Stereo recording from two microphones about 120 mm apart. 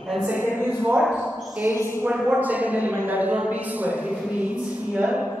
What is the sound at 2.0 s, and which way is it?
Speech, 10° right (ahead or behind).